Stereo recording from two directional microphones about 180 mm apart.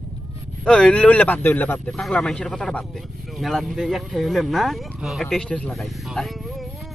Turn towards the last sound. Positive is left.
turn(degrees=5)  # may be behind; listen again after turning